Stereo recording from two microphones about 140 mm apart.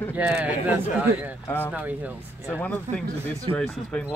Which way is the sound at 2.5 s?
15° left (ahead or behind).